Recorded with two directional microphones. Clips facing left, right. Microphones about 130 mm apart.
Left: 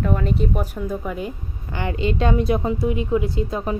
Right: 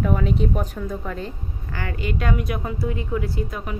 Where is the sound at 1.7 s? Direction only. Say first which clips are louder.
Left 5 dB; 20° left (ahead or behind).